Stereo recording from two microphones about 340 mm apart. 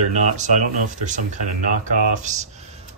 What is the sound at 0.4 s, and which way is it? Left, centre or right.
Speech, right.